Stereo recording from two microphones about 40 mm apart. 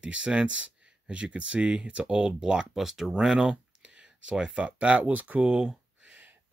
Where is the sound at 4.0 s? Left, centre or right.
Right.